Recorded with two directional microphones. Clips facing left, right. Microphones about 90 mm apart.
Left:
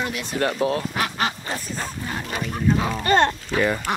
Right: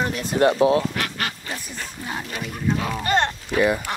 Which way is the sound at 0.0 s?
40° right (ahead or behind).